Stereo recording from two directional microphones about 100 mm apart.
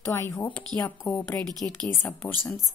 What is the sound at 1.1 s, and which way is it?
A woman's voice, 20° left (ahead or behind).